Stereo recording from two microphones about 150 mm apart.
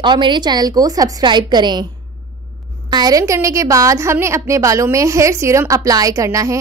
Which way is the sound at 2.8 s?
25° right (ahead or behind).